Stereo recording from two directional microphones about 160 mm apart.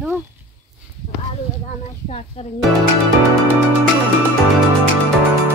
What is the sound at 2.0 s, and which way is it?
Speech, 40° left (ahead or behind).